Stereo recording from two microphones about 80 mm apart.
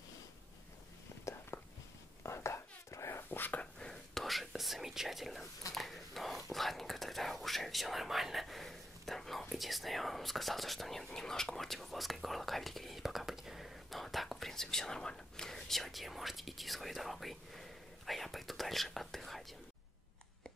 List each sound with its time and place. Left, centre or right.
1.5 s whispering: left
3.8 s whispering: centre